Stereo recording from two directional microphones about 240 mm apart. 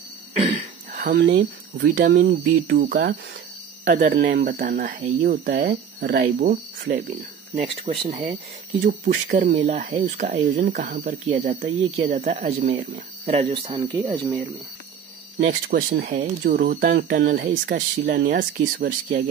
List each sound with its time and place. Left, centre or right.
0.4 s throat clearing: right
1.1 s speech: right; by 14.4 s centre
15.3 s speech: right